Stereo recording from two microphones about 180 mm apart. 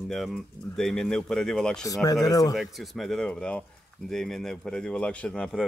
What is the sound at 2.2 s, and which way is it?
Speech, 20° left (ahead or behind).